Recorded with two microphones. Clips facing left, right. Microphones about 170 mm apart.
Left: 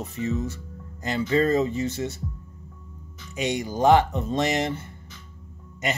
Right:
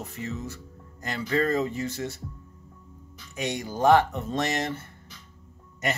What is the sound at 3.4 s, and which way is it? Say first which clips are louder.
Speech: left 3 dB; 20° left (ahead or behind).